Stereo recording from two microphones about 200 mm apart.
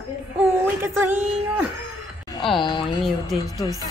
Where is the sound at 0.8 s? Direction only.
10° right (ahead or behind).